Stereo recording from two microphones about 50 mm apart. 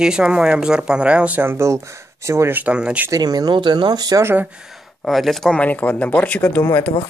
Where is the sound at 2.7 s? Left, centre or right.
Right.